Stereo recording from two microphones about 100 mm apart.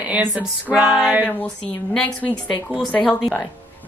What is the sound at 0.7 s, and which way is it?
Music, centre (ahead or behind).